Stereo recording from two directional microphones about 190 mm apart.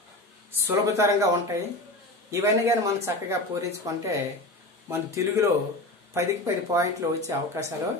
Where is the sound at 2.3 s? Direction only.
15° right (ahead or behind).